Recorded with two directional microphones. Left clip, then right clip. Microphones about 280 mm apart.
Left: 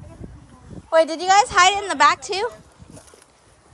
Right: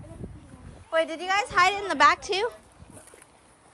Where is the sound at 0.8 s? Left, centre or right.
Centre.